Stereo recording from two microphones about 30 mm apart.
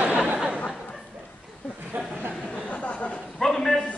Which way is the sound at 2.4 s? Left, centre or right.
Left.